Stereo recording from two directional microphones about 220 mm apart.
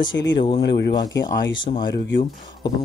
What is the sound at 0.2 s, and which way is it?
Speech, 55° left (ahead or behind).